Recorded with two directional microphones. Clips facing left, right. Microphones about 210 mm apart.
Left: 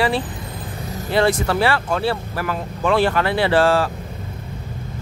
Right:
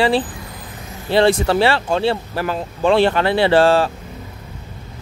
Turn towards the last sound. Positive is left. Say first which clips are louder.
# right 3 dB
turn(degrees=-25)  # may be behind; listen again after turning